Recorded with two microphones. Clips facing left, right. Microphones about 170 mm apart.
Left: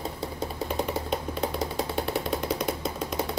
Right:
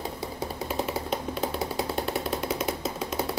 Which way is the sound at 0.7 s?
Centre (ahead or behind).